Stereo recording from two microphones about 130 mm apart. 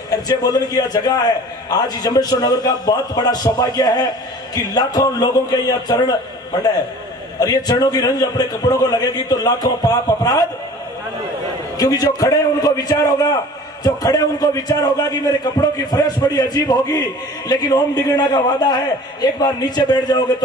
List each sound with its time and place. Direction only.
0.1 s a man's voice: 30° left (ahead or behind)
7.3 s a man's voice: 30° left (ahead or behind)
11.8 s a man's voice: 30° left (ahead or behind)